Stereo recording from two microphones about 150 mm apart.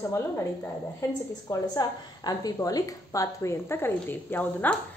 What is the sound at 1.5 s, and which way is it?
A woman's voice, 25° left (ahead or behind).